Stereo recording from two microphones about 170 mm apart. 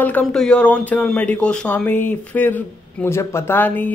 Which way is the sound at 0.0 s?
5° left (ahead or behind).